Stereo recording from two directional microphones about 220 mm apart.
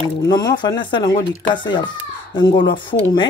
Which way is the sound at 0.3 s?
20° left (ahead or behind).